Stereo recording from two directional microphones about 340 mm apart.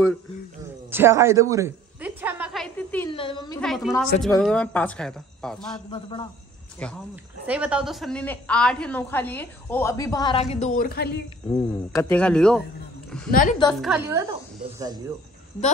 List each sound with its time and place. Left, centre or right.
0.8 s a sound: centre
3.1 s a woman's voice: centre
5.9 s a woman's voice: centre
6.8 s a woman's voice: centre; by 11.1 s left
11.5 s a woman's voice: centre
13.3 s a woman's voice: left
13.7 s a woman's voice: centre